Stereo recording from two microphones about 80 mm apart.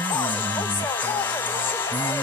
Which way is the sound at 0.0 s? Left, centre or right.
Left.